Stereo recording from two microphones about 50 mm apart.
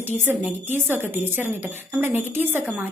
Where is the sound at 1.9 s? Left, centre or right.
Right.